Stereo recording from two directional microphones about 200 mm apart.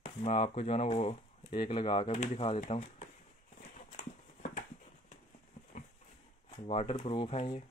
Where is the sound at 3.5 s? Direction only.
40° left (ahead or behind).